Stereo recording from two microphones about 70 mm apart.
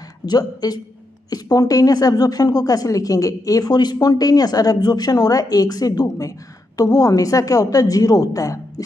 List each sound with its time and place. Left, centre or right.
0.3 s a woman's voice: left